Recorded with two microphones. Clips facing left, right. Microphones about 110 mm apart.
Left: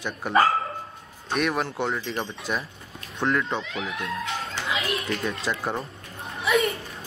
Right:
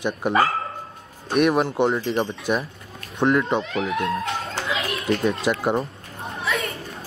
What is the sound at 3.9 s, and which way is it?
Speech, 65° right (ahead or behind).